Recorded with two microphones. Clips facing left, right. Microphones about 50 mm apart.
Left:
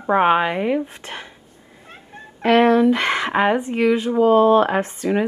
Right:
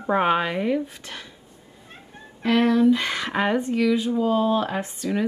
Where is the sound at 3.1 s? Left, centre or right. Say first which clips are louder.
Left 5 dB; left.